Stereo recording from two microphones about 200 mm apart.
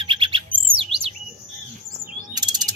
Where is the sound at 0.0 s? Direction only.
25° right (ahead or behind).